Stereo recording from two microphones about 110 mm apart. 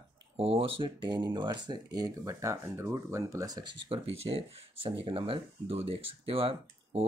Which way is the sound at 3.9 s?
60° right (ahead or behind).